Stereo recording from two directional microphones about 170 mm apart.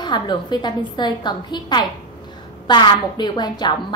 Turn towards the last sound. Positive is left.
turn(degrees=25)  # may be behind; listen again after turning